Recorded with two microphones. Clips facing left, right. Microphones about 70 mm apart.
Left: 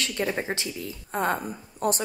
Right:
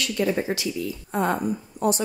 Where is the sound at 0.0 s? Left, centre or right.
Left.